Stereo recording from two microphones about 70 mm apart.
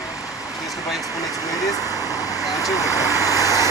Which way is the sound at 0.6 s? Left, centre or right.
Left.